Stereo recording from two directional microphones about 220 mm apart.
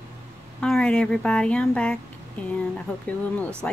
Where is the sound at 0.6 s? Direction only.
5° left (ahead or behind).